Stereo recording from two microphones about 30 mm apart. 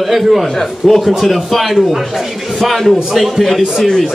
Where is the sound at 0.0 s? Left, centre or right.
Centre.